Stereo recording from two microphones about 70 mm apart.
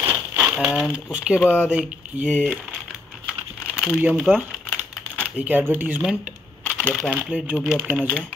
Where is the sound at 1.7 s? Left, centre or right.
Centre.